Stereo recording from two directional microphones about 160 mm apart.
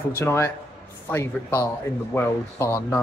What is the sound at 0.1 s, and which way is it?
Speech, 15° left (ahead or behind).